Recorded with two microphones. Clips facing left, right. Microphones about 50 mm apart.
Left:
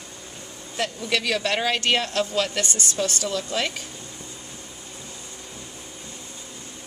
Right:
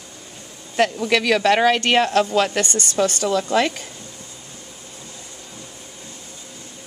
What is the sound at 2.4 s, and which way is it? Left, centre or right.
A woman's voice, right.